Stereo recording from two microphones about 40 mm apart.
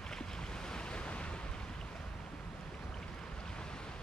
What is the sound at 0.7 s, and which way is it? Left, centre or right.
Waves, left.